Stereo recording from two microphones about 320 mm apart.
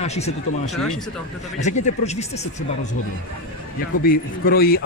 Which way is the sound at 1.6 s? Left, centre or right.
Left.